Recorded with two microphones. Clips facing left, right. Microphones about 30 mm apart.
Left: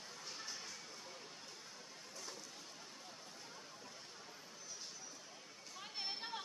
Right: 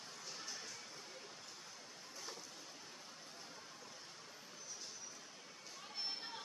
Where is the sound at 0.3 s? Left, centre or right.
Centre.